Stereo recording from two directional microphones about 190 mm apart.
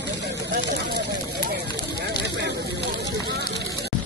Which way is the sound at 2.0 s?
65° right (ahead or behind).